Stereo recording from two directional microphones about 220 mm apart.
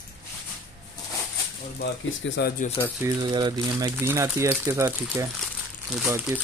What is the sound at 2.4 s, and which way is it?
Speech, 45° left (ahead or behind).